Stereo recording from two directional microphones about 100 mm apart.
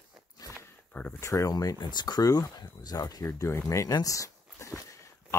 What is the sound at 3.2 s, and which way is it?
Speech, 25° left (ahead or behind).